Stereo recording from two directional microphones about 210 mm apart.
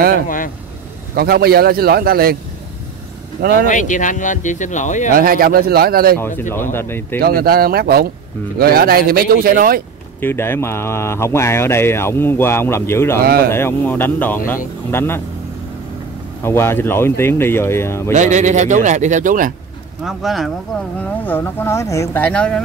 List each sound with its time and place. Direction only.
1.1 s a man's voice: 45° right (ahead or behind)
3.3 s speech: 45° right (ahead or behind)
3.6 s speech: 35° left (ahead or behind)
5.1 s a man's voice: 45° right (ahead or behind)
6.1 s speech: 10° left (ahead or behind)
7.2 s a man's voice: 45° right (ahead or behind)
10.2 s speech: 10° left (ahead or behind)
13.2 s a man's voice: 45° right (ahead or behind)
13.5 s speech: 10° left (ahead or behind)
16.4 s speech: 10° left (ahead or behind)
18.1 s a man's voice: 35° right (ahead or behind)
20.1 s speech: centre (ahead or behind)